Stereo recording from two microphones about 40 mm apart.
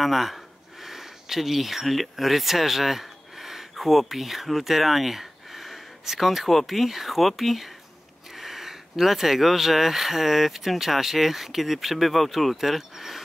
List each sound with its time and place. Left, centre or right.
0.0 s speech: centre